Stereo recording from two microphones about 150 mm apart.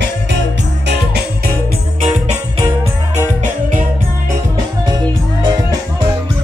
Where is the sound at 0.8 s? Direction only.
90° right.